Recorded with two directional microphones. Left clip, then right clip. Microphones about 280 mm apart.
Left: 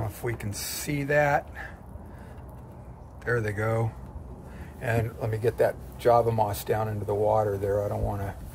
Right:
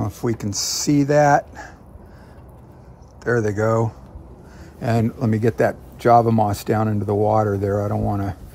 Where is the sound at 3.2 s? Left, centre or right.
Centre.